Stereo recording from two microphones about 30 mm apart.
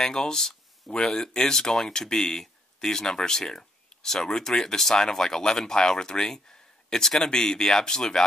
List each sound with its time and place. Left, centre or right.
0.0 s speech: left